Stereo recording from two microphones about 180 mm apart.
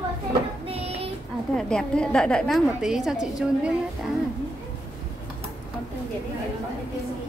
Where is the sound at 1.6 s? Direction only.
5° left (ahead or behind).